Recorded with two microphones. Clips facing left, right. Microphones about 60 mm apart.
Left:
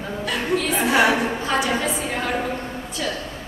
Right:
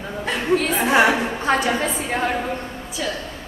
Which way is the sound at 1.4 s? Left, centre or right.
Right.